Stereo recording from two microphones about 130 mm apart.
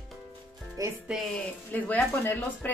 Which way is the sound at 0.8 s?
25° right (ahead or behind).